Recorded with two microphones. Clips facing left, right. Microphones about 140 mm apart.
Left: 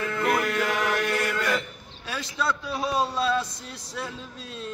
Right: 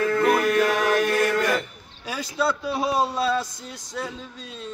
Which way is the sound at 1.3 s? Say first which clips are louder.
Right 4 dB; 45° right (ahead or behind).